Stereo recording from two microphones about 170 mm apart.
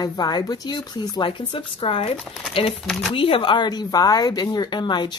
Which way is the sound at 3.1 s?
30° left (ahead or behind).